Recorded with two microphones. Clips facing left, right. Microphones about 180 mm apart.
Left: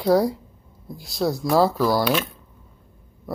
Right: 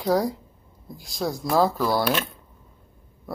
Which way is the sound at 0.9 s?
45° right (ahead or behind).